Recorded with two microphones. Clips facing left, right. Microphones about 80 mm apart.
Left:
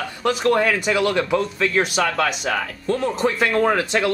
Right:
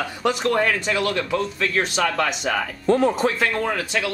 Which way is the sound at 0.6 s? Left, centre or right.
Centre.